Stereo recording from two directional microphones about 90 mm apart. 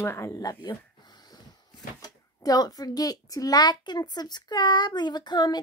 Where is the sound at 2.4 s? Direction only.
45° left (ahead or behind).